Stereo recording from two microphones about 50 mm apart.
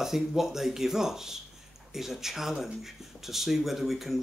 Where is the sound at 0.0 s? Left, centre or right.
Centre.